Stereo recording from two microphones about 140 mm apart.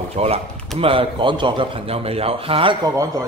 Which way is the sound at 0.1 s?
50° right (ahead or behind).